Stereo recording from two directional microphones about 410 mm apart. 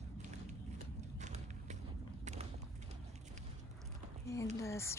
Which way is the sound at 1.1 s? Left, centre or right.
Centre.